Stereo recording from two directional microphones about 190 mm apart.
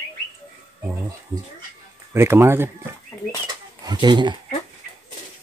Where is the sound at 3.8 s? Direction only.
25° right (ahead or behind).